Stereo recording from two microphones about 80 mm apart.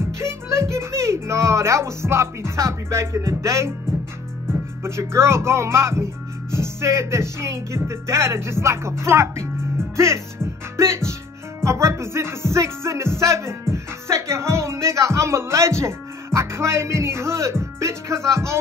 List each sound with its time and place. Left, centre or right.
0.2 s speech: right
4.8 s music: right
11.6 s music: right